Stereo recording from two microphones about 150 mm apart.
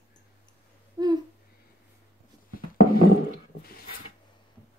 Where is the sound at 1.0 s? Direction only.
25° right (ahead or behind).